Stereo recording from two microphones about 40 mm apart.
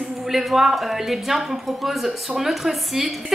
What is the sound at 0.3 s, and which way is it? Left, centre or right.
A woman's voice, centre.